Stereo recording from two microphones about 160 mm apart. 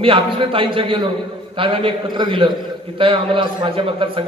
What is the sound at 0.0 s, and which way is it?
A man's voice, 35° right (ahead or behind).